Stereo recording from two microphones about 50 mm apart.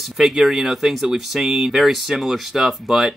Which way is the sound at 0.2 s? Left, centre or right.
Centre.